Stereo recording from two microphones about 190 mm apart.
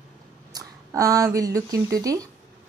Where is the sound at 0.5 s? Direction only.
20° right (ahead or behind).